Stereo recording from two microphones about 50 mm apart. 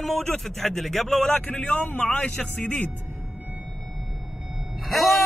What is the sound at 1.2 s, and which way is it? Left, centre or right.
Speech, left.